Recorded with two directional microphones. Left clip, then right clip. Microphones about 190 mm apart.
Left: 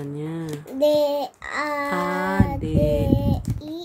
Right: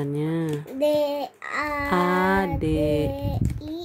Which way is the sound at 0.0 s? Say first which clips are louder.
Right 4 dB; 30° right (ahead or behind).